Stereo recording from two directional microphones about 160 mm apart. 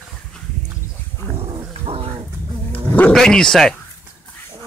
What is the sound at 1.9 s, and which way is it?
Roaring cats, 40° right (ahead or behind).